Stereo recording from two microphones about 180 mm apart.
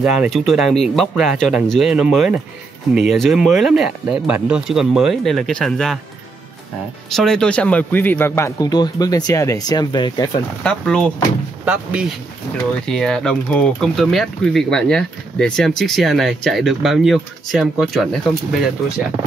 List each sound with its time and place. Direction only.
0.0 s speech: 5° right (ahead or behind)
7.1 s speech: centre (ahead or behind); by 10.4 s 20° left (ahead or behind)
10.6 s speech: 5° left (ahead or behind)
11.6 s speech: 5° right (ahead or behind)